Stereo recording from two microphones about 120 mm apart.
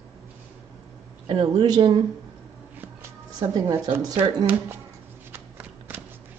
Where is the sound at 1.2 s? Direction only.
45° right (ahead or behind).